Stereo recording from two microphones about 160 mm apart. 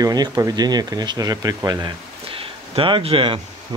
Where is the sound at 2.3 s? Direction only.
35° right (ahead or behind).